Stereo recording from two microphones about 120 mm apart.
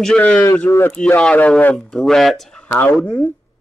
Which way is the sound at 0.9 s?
10° left (ahead or behind).